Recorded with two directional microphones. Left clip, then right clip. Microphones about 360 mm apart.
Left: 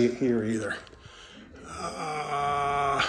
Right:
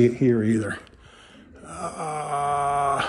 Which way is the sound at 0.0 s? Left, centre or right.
Right.